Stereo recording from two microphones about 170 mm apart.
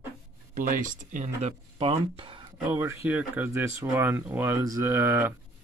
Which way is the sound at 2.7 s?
15° right (ahead or behind).